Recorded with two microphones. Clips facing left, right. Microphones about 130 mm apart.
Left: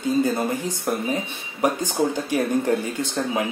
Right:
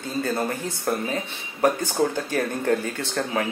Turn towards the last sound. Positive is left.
turn(degrees=15)  # may be behind; listen again after turning